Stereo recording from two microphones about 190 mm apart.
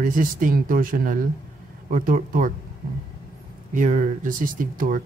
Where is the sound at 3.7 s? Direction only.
45° right (ahead or behind).